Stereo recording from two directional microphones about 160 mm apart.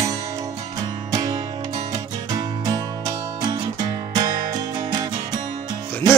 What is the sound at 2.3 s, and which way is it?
Music, 25° right (ahead or behind).